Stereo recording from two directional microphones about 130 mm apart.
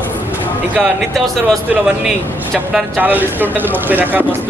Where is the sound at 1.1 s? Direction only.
Centre (ahead or behind).